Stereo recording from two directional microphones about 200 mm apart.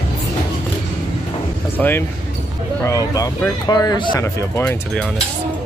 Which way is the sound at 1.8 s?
5° left (ahead or behind).